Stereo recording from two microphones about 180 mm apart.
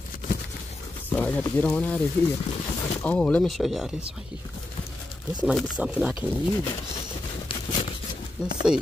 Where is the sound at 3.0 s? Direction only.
5° left (ahead or behind).